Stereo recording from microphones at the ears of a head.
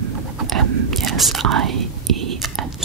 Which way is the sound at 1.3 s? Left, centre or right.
Right.